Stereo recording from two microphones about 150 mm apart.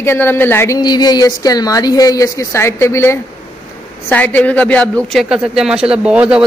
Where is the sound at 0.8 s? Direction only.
25° left (ahead or behind).